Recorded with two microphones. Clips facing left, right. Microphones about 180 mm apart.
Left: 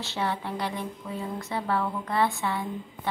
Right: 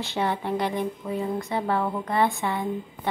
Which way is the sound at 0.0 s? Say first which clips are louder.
Right 4 dB; 15° right (ahead or behind).